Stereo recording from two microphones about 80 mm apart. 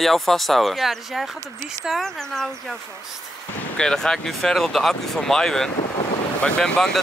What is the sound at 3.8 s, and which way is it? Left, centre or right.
Speech, centre.